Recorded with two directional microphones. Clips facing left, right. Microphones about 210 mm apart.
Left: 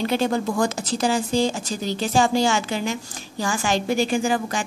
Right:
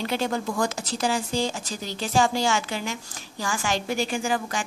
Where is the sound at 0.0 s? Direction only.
35° left (ahead or behind).